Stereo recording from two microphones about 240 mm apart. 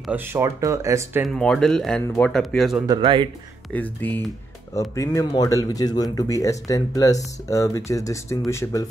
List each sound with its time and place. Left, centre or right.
0.0 s speech: centre
1.2 s speech: centre
2.9 s speech: centre
3.7 s a man's voice: centre